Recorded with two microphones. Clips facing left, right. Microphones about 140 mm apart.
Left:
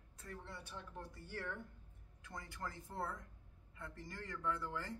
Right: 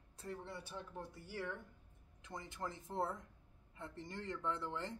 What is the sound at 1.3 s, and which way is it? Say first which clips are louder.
Speech: right 2 dB; 10° right (ahead or behind).